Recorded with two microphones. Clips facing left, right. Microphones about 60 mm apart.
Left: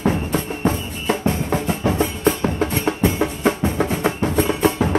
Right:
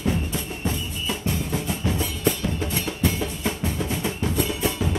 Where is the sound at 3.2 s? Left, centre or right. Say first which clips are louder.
Left 8 dB; left.